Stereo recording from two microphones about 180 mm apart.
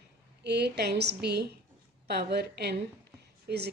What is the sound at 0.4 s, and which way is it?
A woman's voice, 70° right (ahead or behind).